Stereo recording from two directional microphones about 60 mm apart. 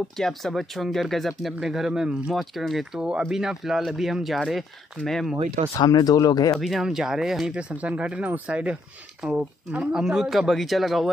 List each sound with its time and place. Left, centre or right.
0.2 s speech: centre
2.5 s speech: centre
3.0 s speech: centre
5.8 s speech: left
6.5 s speech: centre
7.5 s speech: right
9.9 s speech: centre